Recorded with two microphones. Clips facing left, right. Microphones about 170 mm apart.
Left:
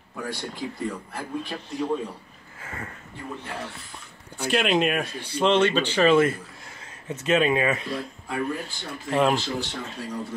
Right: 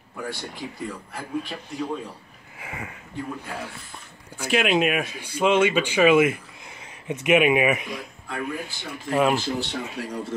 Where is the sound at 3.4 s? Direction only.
10° right (ahead or behind).